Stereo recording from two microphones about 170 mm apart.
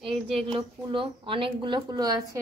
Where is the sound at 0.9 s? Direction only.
30° right (ahead or behind).